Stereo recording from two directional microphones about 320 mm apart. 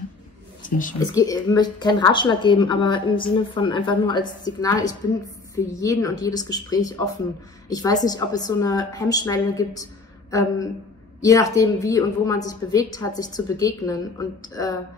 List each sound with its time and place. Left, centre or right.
0.6 s speech: left
1.1 s a woman's voice: centre
11.1 s a woman's voice: centre